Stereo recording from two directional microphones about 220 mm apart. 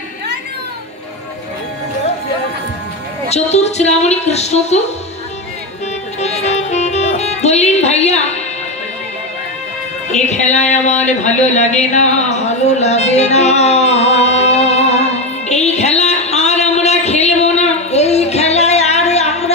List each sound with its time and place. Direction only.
3.3 s a woman's voice: 30° left (ahead or behind)
6.1 s music: 30° left (ahead or behind)
10.1 s a sound: 30° left (ahead or behind)